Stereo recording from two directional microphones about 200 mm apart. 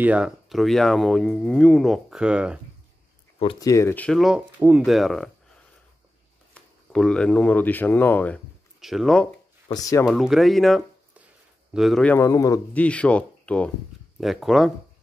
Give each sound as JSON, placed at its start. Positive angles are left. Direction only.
{"t": 0.0, "sound": "speech", "side_deg": -5}
{"t": 3.3, "sound": "a man's voice", "side_deg": 25}
{"t": 6.5, "sound": "speech", "side_deg": 5}
{"t": 9.7, "sound": "a man's voice", "side_deg": 15}
{"t": 10.0, "sound": "a man's voice", "side_deg": 0}